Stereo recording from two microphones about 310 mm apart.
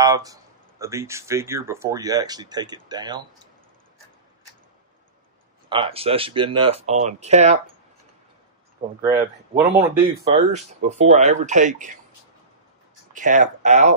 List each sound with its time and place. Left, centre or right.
0.0 s speech: centre
5.7 s speech: centre
8.8 s speech: centre
9.6 s speech: centre
10.2 s speech: right
13.1 s speech: right